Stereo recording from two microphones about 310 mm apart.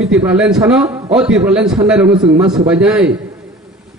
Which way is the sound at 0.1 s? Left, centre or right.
Centre.